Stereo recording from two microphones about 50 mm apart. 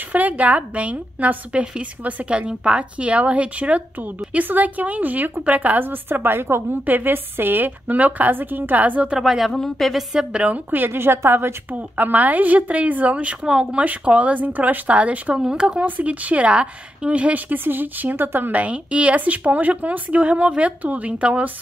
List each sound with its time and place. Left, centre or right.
0.1 s a woman's voice: right
6.9 s a woman's voice: right
9.2 s a woman's voice: centre
10.4 s a woman's voice: right
11.0 s a woman's voice: right
11.7 s a woman's voice: right
15.3 s speech: centre
15.8 s a woman's voice: right
18.5 s a woman's voice: right